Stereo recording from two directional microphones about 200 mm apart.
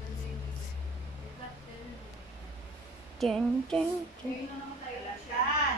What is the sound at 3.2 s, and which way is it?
Speech, centre (ahead or behind).